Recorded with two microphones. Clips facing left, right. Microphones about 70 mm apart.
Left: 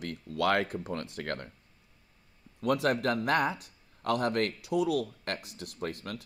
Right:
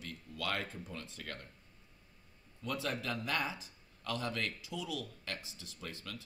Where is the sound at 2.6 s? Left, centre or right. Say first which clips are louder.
Left 11 dB; left.